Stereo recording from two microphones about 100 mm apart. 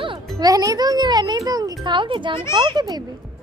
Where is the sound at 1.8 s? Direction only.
55° right (ahead or behind).